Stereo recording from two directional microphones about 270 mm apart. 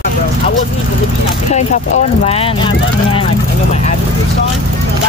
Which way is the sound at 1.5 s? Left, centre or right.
Left.